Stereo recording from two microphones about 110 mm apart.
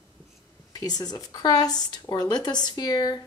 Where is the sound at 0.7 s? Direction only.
35° left (ahead or behind).